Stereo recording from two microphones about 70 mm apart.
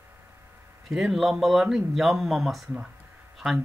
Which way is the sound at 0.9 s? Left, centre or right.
Centre.